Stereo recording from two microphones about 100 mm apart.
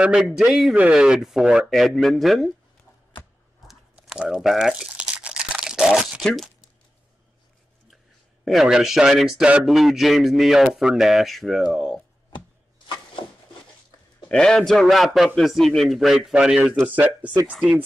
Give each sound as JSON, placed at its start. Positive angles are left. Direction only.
{"t": 0.0, "sound": "speech", "side_deg": -5}
{"t": 3.6, "sound": "crumpling", "side_deg": -5}
{"t": 6.2, "sound": "speech", "side_deg": 5}
{"t": 8.5, "sound": "speech", "side_deg": -5}
{"t": 12.3, "sound": "chopping", "side_deg": 50}
{"t": 14.3, "sound": "speech", "side_deg": 5}